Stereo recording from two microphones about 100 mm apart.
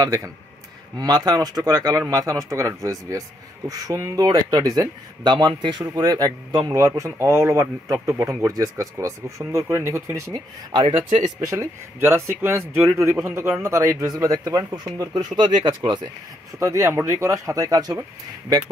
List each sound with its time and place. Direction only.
0.0 s speech: 35° right (ahead or behind); by 5.9 s 50° right (ahead or behind)
5.9 s speech: 40° right (ahead or behind)
10.7 s a man's voice: 55° right (ahead or behind)
11.4 s speech: 30° right (ahead or behind); by 16.0 s 50° right (ahead or behind)
16.5 s speech: 30° right (ahead or behind)